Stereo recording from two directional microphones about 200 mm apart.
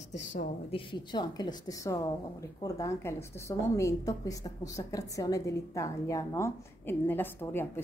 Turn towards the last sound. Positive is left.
turn(degrees=10)  # may be behind; listen again after turning